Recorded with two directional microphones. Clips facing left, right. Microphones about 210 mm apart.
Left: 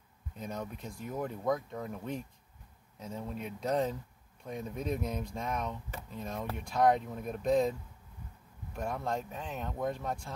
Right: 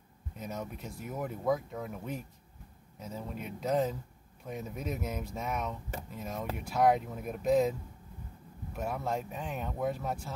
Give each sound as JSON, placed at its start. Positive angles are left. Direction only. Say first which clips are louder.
{"t": 0.4, "sound": "speech", "louder": "even", "side_deg": -5}
{"t": 8.7, "sound": "speech", "louder": "right 1 dB", "side_deg": -5}